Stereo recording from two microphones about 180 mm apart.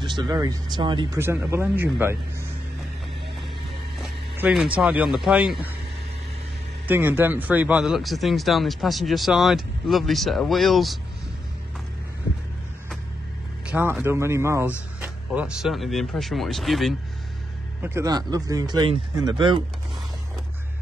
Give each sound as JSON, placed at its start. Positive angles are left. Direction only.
{"t": 0.0, "sound": "speech", "side_deg": -25}
{"t": 1.2, "sound": "speech", "side_deg": -15}
{"t": 4.0, "sound": "speech", "side_deg": -5}
{"t": 6.9, "sound": "speech", "side_deg": -10}
{"t": 13.7, "sound": "speech", "side_deg": -10}
{"t": 17.8, "sound": "speech", "side_deg": -15}